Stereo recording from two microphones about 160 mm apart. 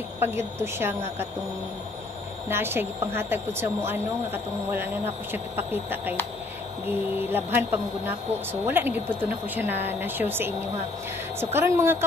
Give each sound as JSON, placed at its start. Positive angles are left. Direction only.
{"t": 0.2, "sound": "speech", "side_deg": -15}
{"t": 2.4, "sound": "speech", "side_deg": -15}